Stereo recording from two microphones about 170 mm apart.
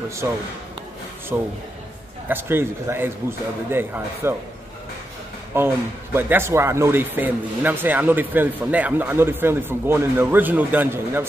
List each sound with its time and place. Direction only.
0.2 s speech: 15° right (ahead or behind)
5.5 s speech: 15° right (ahead or behind)